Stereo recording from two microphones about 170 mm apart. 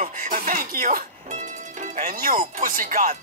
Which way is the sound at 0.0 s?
50° right (ahead or behind).